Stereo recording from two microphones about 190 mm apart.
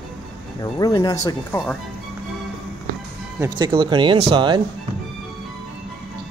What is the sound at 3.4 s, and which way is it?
Speech, 20° right (ahead or behind).